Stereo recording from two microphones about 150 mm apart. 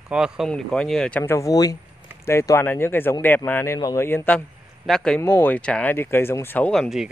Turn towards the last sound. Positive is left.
turn(degrees=0)  # may be behind; listen again after turning